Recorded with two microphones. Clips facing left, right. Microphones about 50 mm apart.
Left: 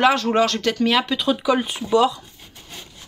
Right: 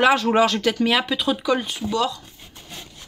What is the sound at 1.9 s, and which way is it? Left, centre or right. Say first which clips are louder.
Speech: left 6 dB; centre.